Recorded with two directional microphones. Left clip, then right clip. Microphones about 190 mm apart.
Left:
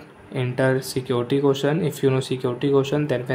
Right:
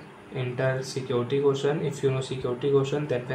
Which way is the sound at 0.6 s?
70° left (ahead or behind).